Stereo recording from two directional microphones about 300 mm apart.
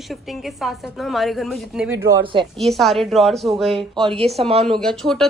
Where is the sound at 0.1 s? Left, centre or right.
Centre.